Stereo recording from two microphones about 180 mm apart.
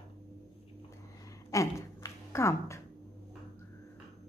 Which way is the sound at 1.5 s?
15° left (ahead or behind).